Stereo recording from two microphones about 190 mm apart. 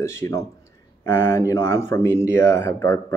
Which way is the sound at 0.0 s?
15° left (ahead or behind).